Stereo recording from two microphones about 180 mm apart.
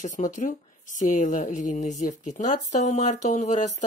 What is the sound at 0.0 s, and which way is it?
Speech, 45° left (ahead or behind).